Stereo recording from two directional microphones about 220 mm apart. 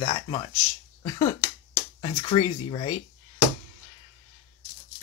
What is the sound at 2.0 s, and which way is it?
Speech, 25° left (ahead or behind).